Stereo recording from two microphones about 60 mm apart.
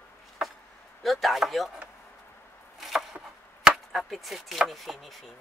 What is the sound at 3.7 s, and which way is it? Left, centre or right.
Chop, centre.